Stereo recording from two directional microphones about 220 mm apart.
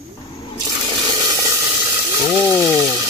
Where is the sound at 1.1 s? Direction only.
20° right (ahead or behind).